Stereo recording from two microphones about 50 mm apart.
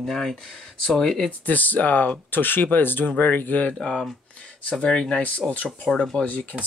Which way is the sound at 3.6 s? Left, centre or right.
Centre.